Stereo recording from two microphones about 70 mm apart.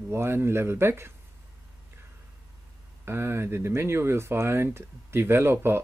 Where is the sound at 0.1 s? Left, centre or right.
Right.